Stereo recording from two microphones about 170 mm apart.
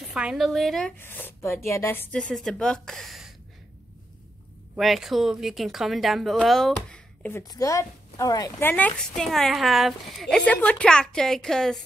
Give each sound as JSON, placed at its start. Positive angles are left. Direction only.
{"t": 0.1, "sound": "a woman's voice", "side_deg": -5}
{"t": 0.9, "sound": "speech", "side_deg": 10}
{"t": 4.7, "sound": "a woman's voice", "side_deg": 0}
{"t": 7.4, "sound": "a woman's voice", "side_deg": 20}
{"t": 8.6, "sound": "a woman's voice", "side_deg": 10}